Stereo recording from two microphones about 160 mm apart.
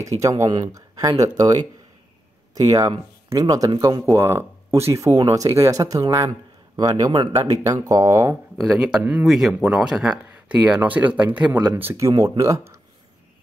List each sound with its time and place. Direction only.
0.0 s speech: 20° right (ahead or behind)
8.5 s speech: 5° right (ahead or behind)